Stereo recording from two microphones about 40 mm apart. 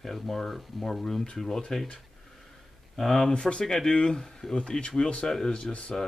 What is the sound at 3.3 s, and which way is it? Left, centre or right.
Speech, left.